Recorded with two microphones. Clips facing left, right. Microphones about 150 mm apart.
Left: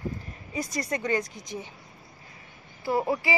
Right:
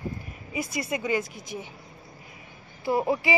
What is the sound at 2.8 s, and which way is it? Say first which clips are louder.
Speech: right 1 dB; 20° right (ahead or behind).